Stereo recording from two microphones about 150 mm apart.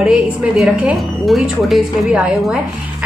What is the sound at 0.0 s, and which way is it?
A woman's voice, 5° right (ahead or behind).